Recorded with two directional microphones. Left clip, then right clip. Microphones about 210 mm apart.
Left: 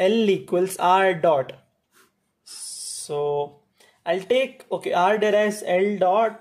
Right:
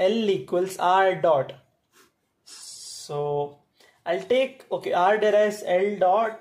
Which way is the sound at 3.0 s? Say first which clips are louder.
Left 2 dB; 25° left (ahead or behind).